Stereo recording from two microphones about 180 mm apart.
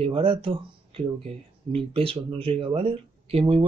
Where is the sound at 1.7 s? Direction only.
30° right (ahead or behind).